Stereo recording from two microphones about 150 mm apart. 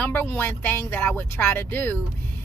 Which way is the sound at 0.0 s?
15° left (ahead or behind).